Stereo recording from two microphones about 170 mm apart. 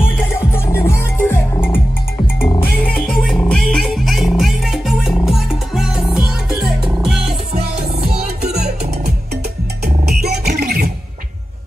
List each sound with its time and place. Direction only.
0.3 s music: 15° left (ahead or behind); by 7.3 s centre (ahead or behind)
7.5 s music: 65° right (ahead or behind)
10.0 s music: 70° right (ahead or behind)